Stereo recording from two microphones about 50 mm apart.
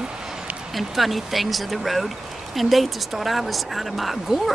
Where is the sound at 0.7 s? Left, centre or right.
Centre.